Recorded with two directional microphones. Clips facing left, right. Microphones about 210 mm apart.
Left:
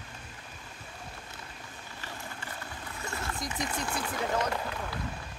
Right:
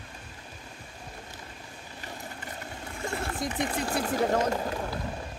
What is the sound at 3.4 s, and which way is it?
Speech, 30° right (ahead or behind).